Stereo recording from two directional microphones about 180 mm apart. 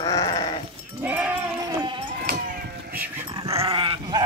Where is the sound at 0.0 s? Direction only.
20° left (ahead or behind).